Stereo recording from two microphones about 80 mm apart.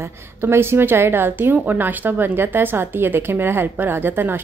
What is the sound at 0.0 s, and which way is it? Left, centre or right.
A woman's voice, right.